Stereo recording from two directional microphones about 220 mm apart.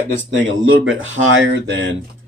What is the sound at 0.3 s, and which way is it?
A man's voice, 55° right (ahead or behind).